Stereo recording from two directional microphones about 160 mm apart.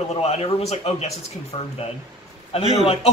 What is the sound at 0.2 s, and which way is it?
Speech, 40° left (ahead or behind).